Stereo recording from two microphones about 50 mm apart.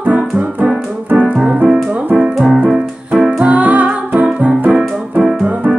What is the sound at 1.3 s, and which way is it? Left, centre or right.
Music, right.